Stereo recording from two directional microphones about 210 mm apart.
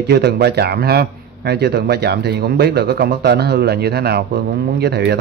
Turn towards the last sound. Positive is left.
turn(degrees=-50)  # may be behind; listen again after turning